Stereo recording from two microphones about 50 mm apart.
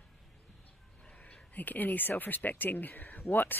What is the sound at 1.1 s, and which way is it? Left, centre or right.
Speech, left.